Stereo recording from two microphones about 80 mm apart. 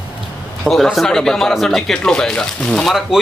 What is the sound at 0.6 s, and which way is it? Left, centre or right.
Speech, centre.